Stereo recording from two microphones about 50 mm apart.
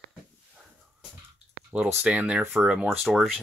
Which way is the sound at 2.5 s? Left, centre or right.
Centre.